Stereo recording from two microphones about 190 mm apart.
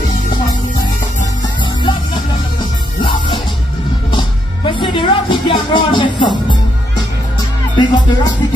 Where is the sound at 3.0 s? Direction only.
25° left (ahead or behind).